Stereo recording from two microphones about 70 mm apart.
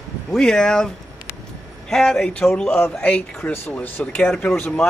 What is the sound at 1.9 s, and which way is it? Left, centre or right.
Speech, centre.